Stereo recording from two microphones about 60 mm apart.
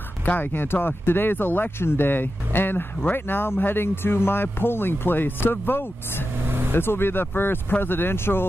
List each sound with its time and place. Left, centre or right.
0.2 s speech: left
6.4 s vehicle: right
6.7 s speech: left